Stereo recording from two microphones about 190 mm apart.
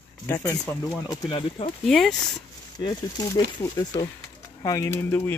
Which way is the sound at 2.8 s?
15° left (ahead or behind).